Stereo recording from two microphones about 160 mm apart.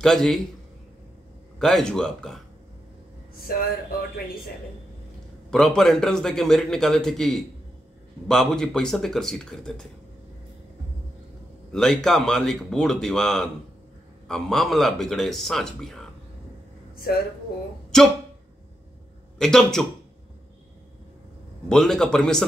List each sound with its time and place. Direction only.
0.0 s a man's voice: 5° left (ahead or behind)
1.6 s a man's voice: 5° left (ahead or behind)
3.5 s speech: 70° left (ahead or behind)
5.5 s a man's voice: 5° left (ahead or behind)
11.7 s a man's voice: 5° left (ahead or behind)
16.9 s a sound: 70° left (ahead or behind)
17.9 s a man's voice: 5° left (ahead or behind)
19.3 s a man's voice: 5° left (ahead or behind)
21.6 s a man's voice: 5° left (ahead or behind)